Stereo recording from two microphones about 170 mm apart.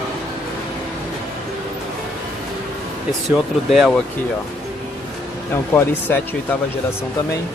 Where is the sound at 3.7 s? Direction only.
Centre (ahead or behind).